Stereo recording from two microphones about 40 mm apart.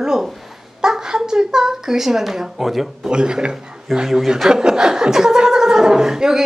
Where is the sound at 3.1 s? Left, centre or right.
Right.